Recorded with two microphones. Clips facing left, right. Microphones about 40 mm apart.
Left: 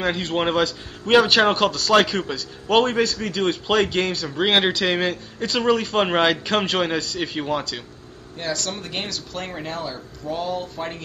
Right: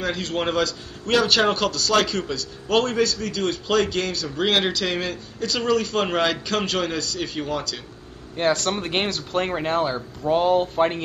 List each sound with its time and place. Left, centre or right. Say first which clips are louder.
0.0 s a man's voice: left 3 dB; left
8.4 s speech: right 6 dB; right